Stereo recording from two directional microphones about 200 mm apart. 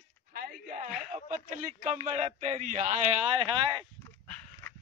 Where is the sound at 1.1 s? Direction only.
35° right (ahead or behind).